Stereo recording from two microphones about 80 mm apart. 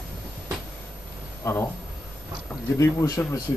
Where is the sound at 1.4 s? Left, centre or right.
Left.